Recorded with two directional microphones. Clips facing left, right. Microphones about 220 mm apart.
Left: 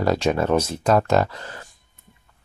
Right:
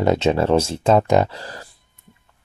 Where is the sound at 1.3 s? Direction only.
35° right (ahead or behind).